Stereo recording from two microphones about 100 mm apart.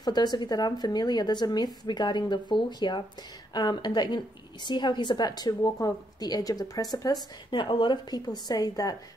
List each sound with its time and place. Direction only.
0.0 s a woman's voice: 45° left (ahead or behind)
7.5 s a woman's voice: 55° left (ahead or behind); by 8.9 s 35° left (ahead or behind)